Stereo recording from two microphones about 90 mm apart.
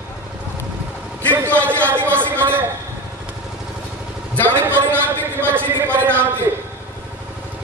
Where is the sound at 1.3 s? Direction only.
25° right (ahead or behind).